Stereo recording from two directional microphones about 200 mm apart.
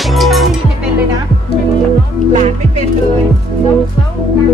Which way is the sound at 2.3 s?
35° right (ahead or behind).